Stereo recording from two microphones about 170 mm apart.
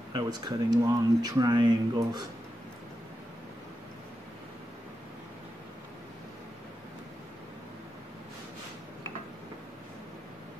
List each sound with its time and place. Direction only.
0.1 s speech: 25° right (ahead or behind)